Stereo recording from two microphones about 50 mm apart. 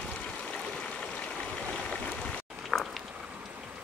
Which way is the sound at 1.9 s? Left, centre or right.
Centre.